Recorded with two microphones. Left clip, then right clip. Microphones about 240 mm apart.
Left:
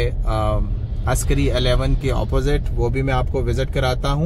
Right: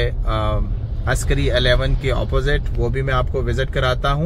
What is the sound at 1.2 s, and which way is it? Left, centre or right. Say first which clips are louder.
Speech: right 3 dB; centre.